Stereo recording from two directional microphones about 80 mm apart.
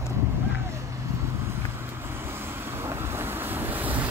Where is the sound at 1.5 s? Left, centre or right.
Right.